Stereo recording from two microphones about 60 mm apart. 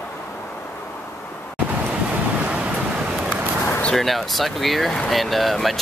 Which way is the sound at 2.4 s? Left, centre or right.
Right.